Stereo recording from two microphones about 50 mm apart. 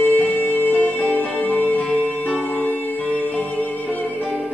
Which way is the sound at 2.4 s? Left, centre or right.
Left.